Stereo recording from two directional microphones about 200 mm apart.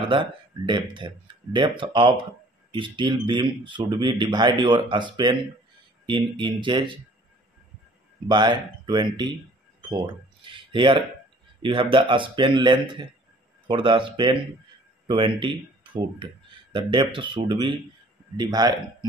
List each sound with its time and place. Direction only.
0.1 s speech: 25° right (ahead or behind)
8.3 s speech: 20° right (ahead or behind)